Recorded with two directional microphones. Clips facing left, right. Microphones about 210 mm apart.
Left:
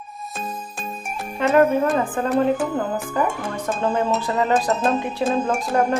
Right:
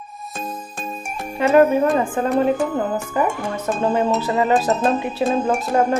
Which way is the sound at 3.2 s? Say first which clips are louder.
Right 2 dB; 10° right (ahead or behind).